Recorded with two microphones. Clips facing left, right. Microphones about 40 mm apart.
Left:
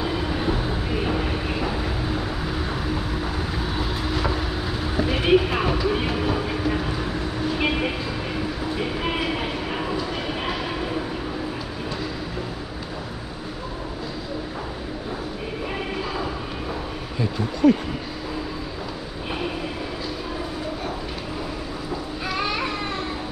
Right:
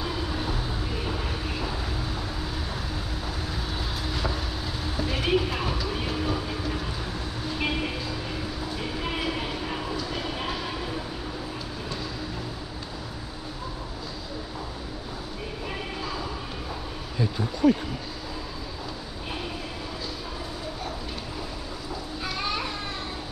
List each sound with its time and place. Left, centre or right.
0.0 s vehicle: left
4.0 s vehicle: left
4.9 s a sound: left
8.7 s train: left
17.6 s a sound: left
22.2 s children playing: left